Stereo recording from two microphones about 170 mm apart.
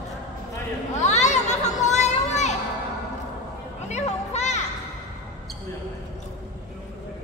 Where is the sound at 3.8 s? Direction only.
40° left (ahead or behind).